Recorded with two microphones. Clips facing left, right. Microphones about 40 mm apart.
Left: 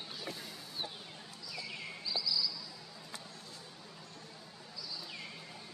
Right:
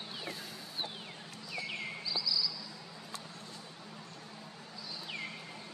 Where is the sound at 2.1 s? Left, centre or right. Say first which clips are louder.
Even; centre.